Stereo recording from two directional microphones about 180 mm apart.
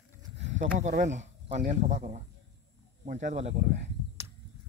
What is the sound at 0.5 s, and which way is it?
Speech, 40° right (ahead or behind).